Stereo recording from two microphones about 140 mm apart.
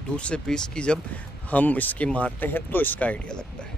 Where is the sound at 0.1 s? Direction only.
10° left (ahead or behind).